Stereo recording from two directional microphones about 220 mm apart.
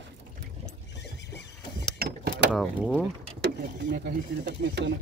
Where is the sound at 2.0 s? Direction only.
45° right (ahead or behind).